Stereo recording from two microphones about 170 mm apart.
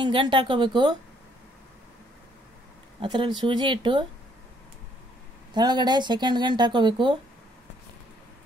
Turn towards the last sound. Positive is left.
turn(degrees=-25)  # may be behind; listen again after turning